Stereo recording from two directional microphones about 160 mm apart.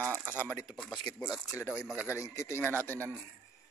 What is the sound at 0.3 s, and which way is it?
Speech, 15° left (ahead or behind).